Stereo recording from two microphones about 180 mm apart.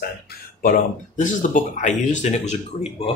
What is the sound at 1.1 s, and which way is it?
Speech, 45° left (ahead or behind).